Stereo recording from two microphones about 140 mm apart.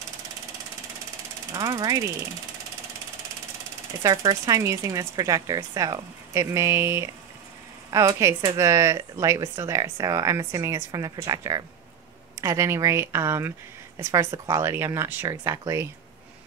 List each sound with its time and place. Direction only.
1.5 s speech: 25° right (ahead or behind)
4.0 s speech: 25° right (ahead or behind)